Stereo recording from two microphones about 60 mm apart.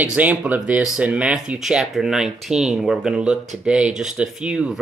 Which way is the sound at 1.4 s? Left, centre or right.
Centre.